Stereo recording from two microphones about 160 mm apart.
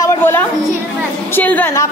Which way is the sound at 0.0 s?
15° left (ahead or behind).